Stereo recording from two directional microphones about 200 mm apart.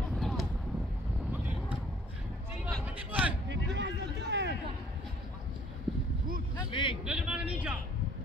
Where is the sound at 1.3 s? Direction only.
5° right (ahead or behind).